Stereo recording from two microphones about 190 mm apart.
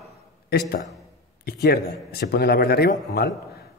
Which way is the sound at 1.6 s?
55° left (ahead or behind).